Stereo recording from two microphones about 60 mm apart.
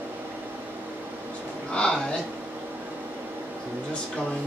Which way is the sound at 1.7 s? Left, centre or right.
Centre.